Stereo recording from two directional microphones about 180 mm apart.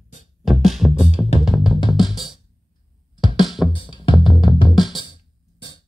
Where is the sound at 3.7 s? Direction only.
30° left (ahead or behind).